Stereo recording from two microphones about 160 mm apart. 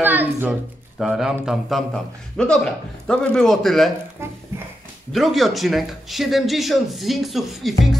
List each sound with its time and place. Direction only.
0.0 s speech: 10° right (ahead or behind)
4.2 s speech: 15° right (ahead or behind)
5.1 s speech: centre (ahead or behind)